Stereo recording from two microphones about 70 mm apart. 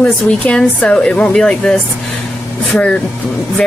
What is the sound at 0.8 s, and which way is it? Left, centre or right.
Speech, centre.